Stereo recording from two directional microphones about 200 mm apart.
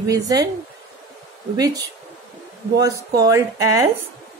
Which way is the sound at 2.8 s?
15° right (ahead or behind).